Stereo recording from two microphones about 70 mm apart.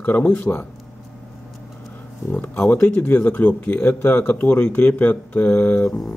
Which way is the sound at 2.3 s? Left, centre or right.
Left.